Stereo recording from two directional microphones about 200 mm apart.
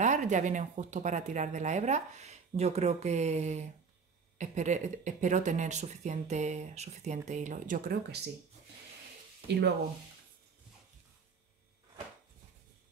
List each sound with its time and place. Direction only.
0.0 s speech: 35° right (ahead or behind)